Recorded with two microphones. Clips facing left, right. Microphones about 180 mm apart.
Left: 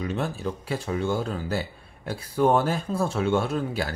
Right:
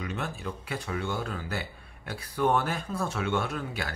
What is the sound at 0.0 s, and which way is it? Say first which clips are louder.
Speech: left 6 dB; 30° left (ahead or behind).